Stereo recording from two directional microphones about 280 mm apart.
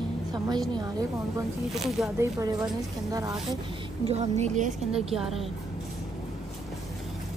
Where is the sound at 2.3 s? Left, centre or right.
Centre.